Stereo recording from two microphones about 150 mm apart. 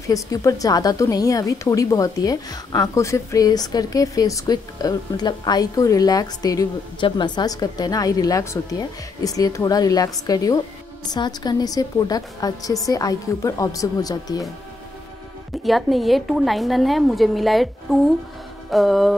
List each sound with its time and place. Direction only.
0.0 s a woman's voice: 20° left (ahead or behind)
15.6 s a woman's voice: centre (ahead or behind)